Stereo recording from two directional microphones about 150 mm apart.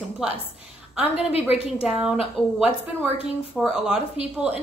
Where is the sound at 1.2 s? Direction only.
40° left (ahead or behind).